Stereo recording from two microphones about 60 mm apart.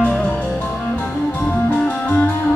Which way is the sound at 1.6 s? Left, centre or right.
Left.